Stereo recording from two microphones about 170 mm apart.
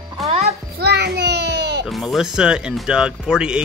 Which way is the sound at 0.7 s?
70° right (ahead or behind).